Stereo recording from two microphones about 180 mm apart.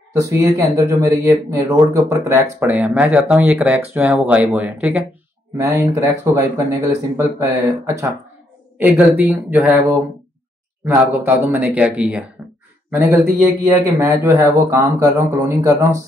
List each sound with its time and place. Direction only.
0.2 s speech: 15° right (ahead or behind)
10.9 s speech: 15° right (ahead or behind)